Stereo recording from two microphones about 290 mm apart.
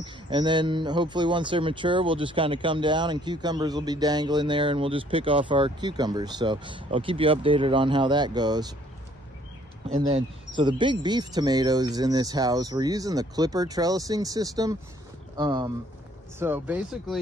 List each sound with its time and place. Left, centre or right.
0.0 s a man's voice: centre
9.8 s a man's voice: right; by 17.2 s centre